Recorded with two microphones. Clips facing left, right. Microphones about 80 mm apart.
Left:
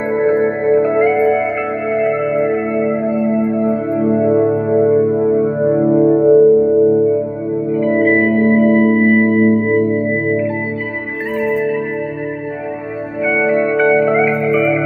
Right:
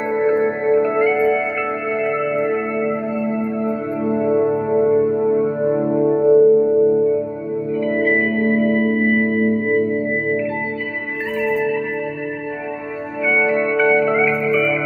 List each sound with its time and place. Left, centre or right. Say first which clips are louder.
0.1 s music: left 3 dB; centre
0.8 s music: left 4 dB; left
6.1 s music: left 1 dB; centre
6.7 s music: left 3 dB; centre
7.7 s music: left 5 dB; left
11.4 s music: left 2 dB; left
13.2 s music: left 3 dB; left